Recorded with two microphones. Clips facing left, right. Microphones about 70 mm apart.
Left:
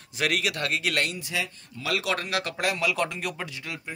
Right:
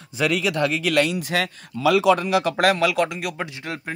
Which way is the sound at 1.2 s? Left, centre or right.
Right.